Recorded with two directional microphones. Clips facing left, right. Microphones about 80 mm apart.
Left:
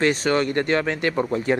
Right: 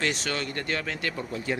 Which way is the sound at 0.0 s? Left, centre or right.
Left.